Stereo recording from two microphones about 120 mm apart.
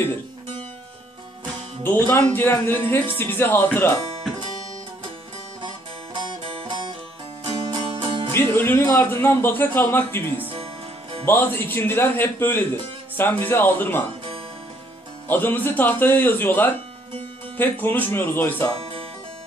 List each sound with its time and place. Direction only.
1.8 s speech: 20° left (ahead or behind)
6.1 s music: 40° right (ahead or behind)
8.4 s speech: 20° left (ahead or behind)
10.5 s music: 50° right (ahead or behind)
11.2 s speech: 20° left (ahead or behind)
15.2 s speech: 15° left (ahead or behind)